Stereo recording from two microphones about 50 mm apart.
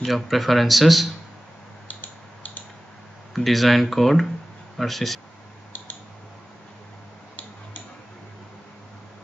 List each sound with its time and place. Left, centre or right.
0.0 s speech: centre
1.9 s a sound: left
3.3 s speech: centre